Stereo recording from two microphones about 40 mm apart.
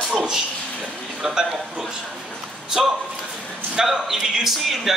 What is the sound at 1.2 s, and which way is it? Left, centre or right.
Speech, centre.